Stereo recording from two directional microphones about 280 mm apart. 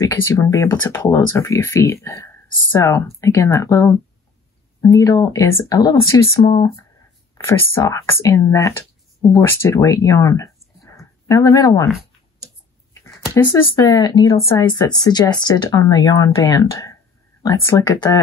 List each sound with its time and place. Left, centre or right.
0.0 s speech: centre
13.3 s speech: centre